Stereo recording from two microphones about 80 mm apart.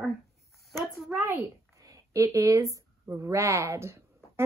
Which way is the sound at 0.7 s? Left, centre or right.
Centre.